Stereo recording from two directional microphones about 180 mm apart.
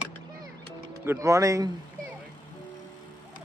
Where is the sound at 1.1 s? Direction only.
15° right (ahead or behind).